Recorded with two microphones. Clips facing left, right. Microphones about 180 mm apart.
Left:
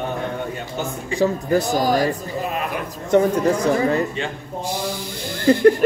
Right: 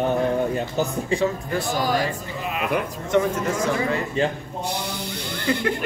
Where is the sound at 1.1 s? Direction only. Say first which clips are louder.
Left 8 dB; 40° left (ahead or behind).